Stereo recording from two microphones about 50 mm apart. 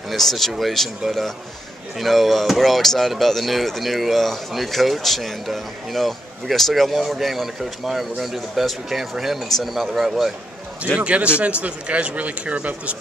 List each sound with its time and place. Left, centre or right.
0.1 s speech: centre
11.0 s speech: right